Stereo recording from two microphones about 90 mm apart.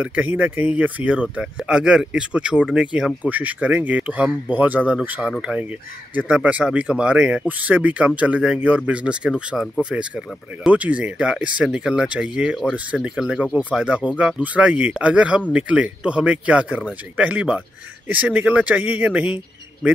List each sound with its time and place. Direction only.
0.0 s speech: 15° right (ahead or behind)